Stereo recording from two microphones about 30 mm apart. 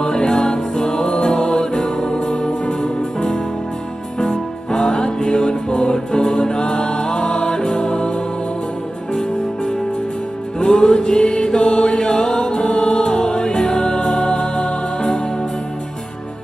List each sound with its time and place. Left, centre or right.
0.0 s music: left
10.6 s mantra: left
13.0 s music: left